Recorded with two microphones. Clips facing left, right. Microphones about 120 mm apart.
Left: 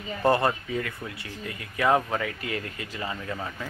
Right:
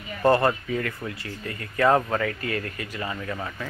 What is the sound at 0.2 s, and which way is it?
Speech, 15° left (ahead or behind).